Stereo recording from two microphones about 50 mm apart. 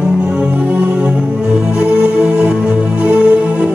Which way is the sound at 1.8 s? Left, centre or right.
Centre.